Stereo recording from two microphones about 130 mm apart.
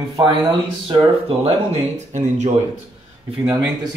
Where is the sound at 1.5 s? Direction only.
55° right (ahead or behind).